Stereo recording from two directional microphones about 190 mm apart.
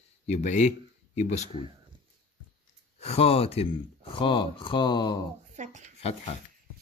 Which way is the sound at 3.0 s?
30° left (ahead or behind).